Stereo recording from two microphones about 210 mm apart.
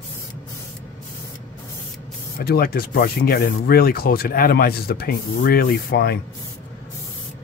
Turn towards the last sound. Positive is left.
turn(degrees=45)  # may be behind; listen again after turning